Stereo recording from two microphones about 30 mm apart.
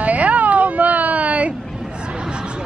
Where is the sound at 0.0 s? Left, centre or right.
Right.